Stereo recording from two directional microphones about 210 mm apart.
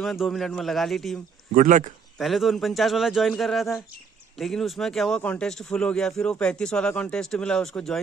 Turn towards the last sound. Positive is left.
turn(degrees=0)  # may be behind; listen again after turning